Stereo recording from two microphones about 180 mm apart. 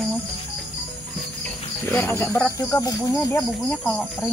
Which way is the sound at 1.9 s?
15° left (ahead or behind).